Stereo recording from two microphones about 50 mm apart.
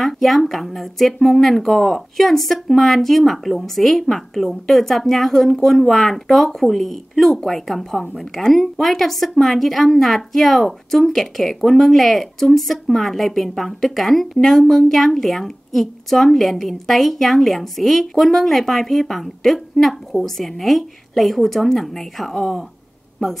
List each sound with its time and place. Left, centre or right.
0.0 s a woman's voice: centre